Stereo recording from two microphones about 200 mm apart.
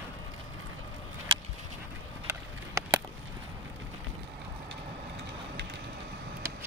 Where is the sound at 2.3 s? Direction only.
15° right (ahead or behind).